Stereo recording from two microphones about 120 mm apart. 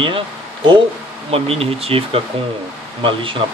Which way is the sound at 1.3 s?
55° right (ahead or behind).